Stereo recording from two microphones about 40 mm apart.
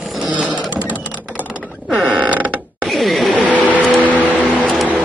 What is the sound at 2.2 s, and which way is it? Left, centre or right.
Mechanisms, right.